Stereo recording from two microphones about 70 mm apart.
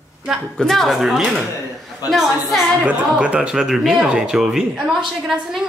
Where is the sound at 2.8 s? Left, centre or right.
Centre.